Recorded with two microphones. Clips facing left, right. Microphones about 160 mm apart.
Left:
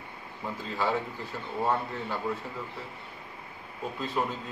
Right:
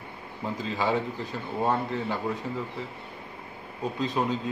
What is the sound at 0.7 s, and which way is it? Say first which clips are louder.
A man's voice: right 2 dB; 15° right (ahead or behind).